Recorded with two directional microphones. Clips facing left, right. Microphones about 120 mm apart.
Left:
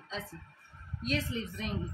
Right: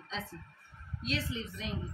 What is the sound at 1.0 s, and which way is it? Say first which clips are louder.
Speech: left 3 dB; 50° left (ahead or behind).